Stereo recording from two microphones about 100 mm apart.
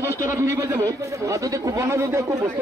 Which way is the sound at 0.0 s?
30° right (ahead or behind).